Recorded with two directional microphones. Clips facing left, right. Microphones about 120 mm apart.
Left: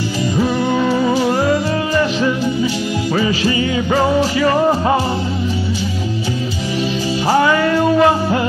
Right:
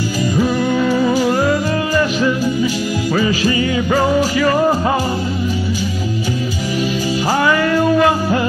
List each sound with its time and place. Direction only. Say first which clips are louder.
0.4 s music: even; 25° left (ahead or behind)
7.2 s music: left 2 dB; 25° left (ahead or behind)